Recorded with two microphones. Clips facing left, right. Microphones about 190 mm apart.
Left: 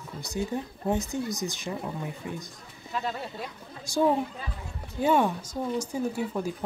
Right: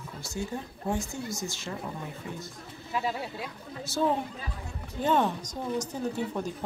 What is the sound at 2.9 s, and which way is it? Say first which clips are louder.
Speech: right 1 dB; 10° right (ahead or behind).